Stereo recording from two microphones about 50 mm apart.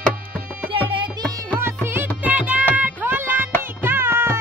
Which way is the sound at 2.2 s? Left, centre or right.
Right.